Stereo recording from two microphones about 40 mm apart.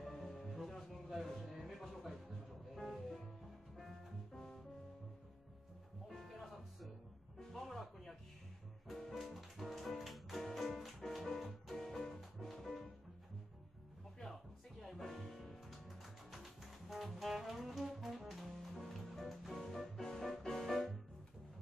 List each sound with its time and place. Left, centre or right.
0.0 s music: centre
1.0 s a sound: centre
2.7 s music: centre
6.0 s music: centre
14.2 s music: left
14.8 s music: centre